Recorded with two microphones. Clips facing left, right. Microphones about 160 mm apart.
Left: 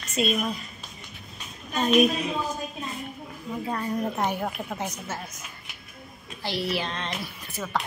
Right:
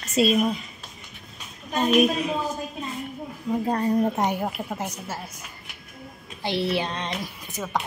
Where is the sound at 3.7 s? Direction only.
35° right (ahead or behind).